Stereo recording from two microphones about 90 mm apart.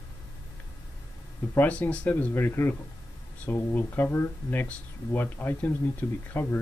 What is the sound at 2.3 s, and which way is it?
Speech, 25° left (ahead or behind).